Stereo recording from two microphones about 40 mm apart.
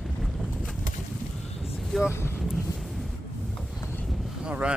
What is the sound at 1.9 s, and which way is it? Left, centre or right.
Speech, centre.